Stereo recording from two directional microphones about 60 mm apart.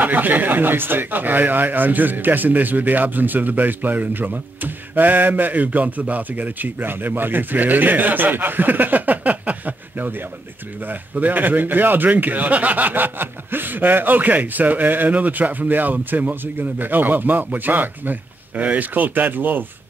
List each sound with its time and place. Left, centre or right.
0.0 s speech: right